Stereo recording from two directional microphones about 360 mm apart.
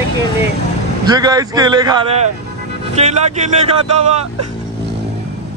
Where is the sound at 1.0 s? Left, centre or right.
Centre.